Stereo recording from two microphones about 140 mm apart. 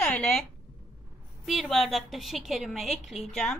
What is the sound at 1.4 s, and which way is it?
A woman's voice, centre (ahead or behind).